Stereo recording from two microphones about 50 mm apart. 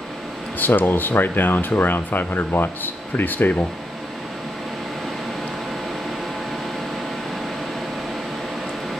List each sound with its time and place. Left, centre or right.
0.6 s speech: left